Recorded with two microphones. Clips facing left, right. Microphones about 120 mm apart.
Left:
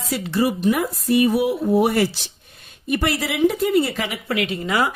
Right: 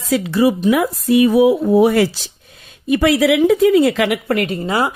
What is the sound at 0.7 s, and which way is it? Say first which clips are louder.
Speech: right 5 dB; 90° right.